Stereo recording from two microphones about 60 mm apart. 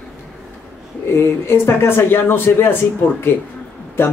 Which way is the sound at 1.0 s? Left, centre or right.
Left.